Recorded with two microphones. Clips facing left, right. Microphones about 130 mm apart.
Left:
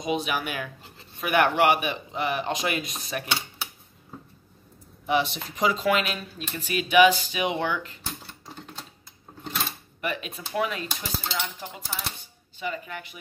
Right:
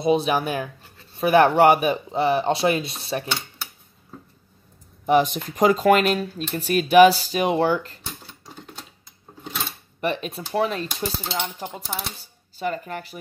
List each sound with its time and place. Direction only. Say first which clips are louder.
0.0 s speech: right 7 dB; 35° right (ahead or behind)
3.3 s cutlery: right 1 dB; 5° left (ahead or behind)
5.0 s speech: right 6 dB; 40° right (ahead or behind)
8.1 s a sound: even; centre (ahead or behind)
9.9 s speech: right 6 dB; 35° right (ahead or behind)
11.3 s speech: right 4 dB; 45° right (ahead or behind)